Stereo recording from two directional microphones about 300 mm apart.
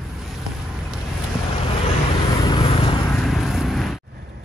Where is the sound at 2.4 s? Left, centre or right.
Centre.